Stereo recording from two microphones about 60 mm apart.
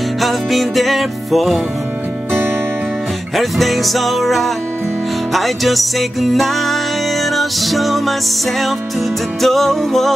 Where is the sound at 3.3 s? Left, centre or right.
Centre.